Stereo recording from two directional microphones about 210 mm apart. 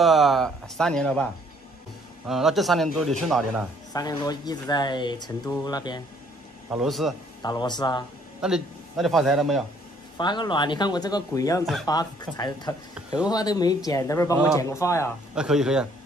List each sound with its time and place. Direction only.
0.0 s speech: centre (ahead or behind)
3.9 s speech: 20° left (ahead or behind)
6.7 s speech: centre (ahead or behind)
7.4 s speech: 20° left (ahead or behind)
8.4 s speech: 5° right (ahead or behind)
10.1 s speech: 20° left (ahead or behind)
15.3 s speech: 5° right (ahead or behind)